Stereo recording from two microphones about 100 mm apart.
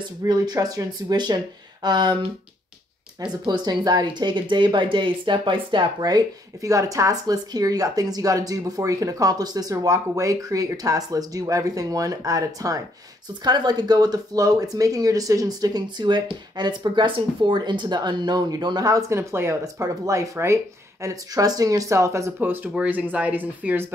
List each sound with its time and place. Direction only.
0.3 s speech: 40° right (ahead or behind)
3.2 s speech: 45° right (ahead or behind); by 23.9 s 20° right (ahead or behind)